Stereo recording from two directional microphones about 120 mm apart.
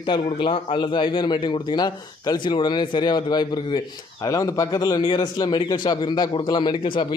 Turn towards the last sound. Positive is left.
turn(degrees=45)  # may be behind; listen again after turning